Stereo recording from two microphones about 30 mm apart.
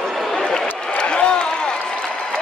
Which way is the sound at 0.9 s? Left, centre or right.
Left.